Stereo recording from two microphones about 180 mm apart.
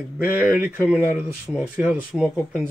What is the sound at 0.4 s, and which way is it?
Speech, 10° right (ahead or behind).